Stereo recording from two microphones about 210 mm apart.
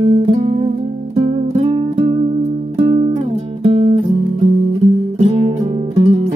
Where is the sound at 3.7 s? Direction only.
30° right (ahead or behind).